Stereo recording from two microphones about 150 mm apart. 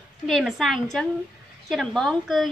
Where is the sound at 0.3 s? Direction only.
Centre (ahead or behind).